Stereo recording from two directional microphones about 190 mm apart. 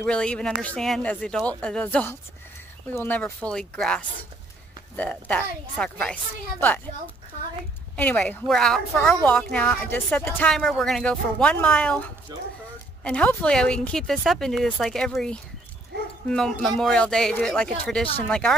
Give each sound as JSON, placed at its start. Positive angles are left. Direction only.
{"t": 0.0, "sound": "a woman's voice", "side_deg": 5}
{"t": 7.9, "sound": "a woman's voice", "side_deg": 5}